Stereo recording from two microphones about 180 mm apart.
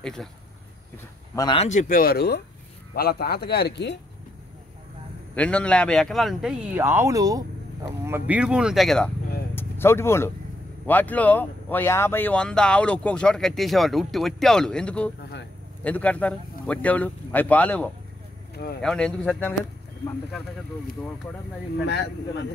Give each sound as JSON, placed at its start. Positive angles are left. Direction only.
{"t": 0.0, "sound": "speech", "side_deg": 0}
{"t": 1.3, "sound": "speech", "side_deg": 20}
{"t": 1.6, "sound": "speech", "side_deg": 45}
{"t": 5.3, "sound": "speech", "side_deg": 5}
{"t": 6.8, "sound": "speech", "side_deg": -15}
{"t": 9.6, "sound": "speech", "side_deg": 15}
{"t": 18.5, "sound": "a sound", "side_deg": 60}
{"t": 18.8, "sound": "speech", "side_deg": 5}
{"t": 21.8, "sound": "speech", "side_deg": 70}